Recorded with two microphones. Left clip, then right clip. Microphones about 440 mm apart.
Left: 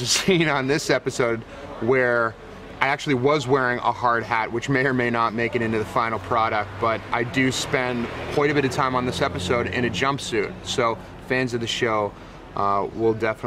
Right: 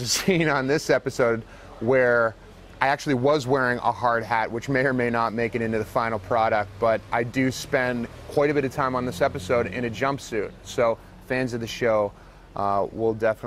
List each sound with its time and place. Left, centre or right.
0.0 s speech: right